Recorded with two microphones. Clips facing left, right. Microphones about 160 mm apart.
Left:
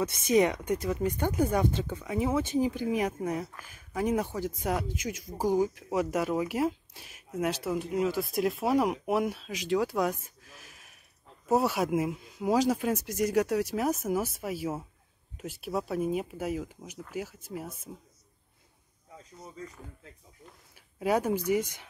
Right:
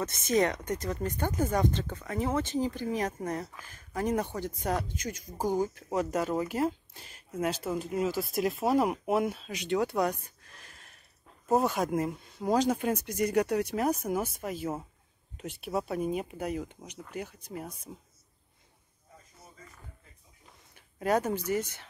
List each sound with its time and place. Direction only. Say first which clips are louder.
0.0 s speech: left 3 dB; 10° left (ahead or behind)
19.1 s speech: left 10 dB; 90° left
20.4 s a sound: left 3 dB; 5° left (ahead or behind)